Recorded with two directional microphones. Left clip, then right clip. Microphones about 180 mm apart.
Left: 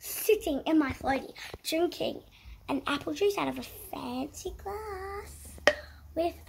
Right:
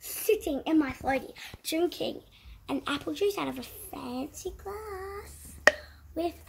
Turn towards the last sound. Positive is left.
turn(degrees=5)  # may be behind; listen again after turning